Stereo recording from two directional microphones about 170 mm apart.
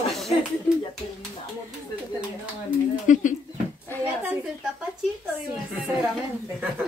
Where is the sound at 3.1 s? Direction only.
50° left (ahead or behind).